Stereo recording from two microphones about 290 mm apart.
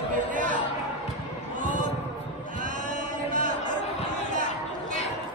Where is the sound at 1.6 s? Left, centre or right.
Right.